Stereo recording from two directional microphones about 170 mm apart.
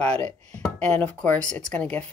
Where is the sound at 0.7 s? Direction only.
5° left (ahead or behind).